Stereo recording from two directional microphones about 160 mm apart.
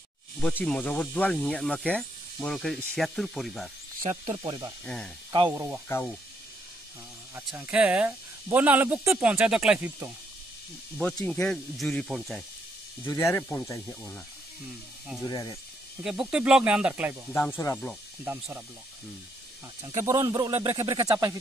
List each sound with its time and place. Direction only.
0.7 s speech: 5° left (ahead or behind)
4.3 s speech: 25° right (ahead or behind)
4.8 s speech: 5° left (ahead or behind)
5.5 s speech: 15° right (ahead or behind)
5.9 s speech: 15° left (ahead or behind)
7.3 s speech: 15° right (ahead or behind)
11.2 s speech: 5° left (ahead or behind)
13.0 s speech: 15° left (ahead or behind)
15.2 s speech: 25° left (ahead or behind)
16.0 s speech: 5° right (ahead or behind)
17.3 s speech: 15° left (ahead or behind)
18.2 s speech: 10° right (ahead or behind)
19.8 s speech: 20° right (ahead or behind)